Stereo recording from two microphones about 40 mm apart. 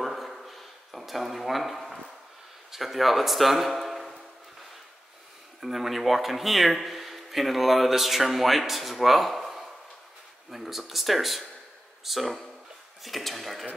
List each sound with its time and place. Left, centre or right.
0.0 s a sound: centre
2.7 s speech: centre
5.6 s speech: centre